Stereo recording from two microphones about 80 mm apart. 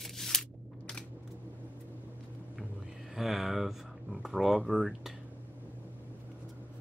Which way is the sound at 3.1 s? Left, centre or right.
Centre.